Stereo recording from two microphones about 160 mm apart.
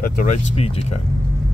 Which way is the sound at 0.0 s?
50° left (ahead or behind).